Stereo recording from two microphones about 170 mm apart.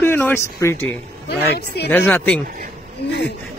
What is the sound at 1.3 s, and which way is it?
Speech, 70° left (ahead or behind).